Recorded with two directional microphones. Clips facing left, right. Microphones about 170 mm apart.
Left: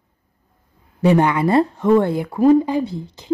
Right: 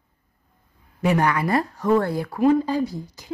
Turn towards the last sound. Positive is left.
turn(degrees=25)  # may be behind; listen again after turning